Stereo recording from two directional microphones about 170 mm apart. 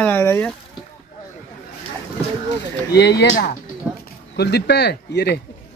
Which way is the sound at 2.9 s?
85° left.